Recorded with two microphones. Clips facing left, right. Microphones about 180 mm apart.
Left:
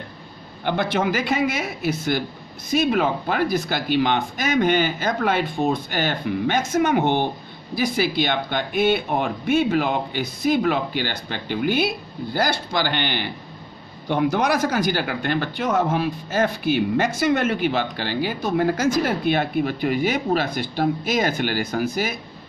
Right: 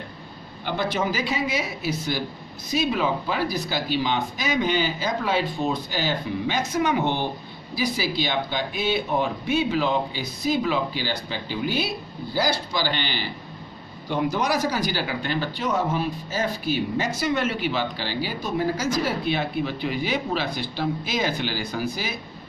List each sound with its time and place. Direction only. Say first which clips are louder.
0.7 s speech: left 4 dB; 60° left (ahead or behind)